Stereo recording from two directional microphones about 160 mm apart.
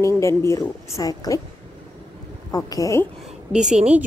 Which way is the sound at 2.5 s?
20° left (ahead or behind).